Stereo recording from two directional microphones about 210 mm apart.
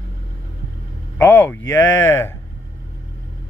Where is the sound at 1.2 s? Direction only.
10° left (ahead or behind).